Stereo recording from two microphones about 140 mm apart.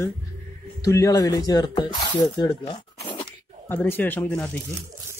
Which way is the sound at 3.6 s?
15° left (ahead or behind).